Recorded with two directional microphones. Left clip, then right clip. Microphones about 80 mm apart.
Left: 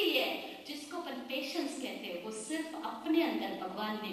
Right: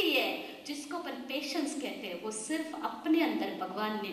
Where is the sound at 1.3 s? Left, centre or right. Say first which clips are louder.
Right 2 dB; right.